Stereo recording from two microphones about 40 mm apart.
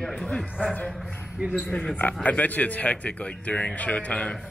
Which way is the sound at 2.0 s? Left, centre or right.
Left.